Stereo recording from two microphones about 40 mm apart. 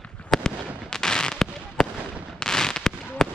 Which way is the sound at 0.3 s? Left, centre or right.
Centre.